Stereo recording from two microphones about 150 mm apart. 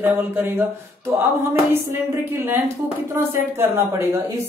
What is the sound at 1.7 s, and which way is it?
Speech, 15° right (ahead or behind).